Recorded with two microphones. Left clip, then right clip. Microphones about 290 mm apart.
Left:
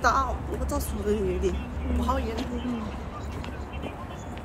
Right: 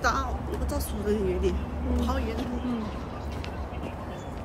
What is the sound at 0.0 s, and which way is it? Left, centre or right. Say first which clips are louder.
A woman's voice: left 3 dB; centre.